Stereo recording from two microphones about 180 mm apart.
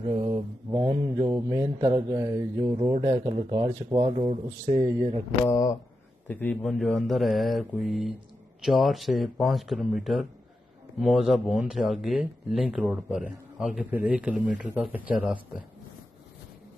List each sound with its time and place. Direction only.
0.1 s mantra: 25° right (ahead or behind)
2.9 s mantra: 30° right (ahead or behind)
3.6 s speech: 30° right (ahead or behind)
5.4 s a man's voice: 15° left (ahead or behind); by 15.6 s 5° right (ahead or behind)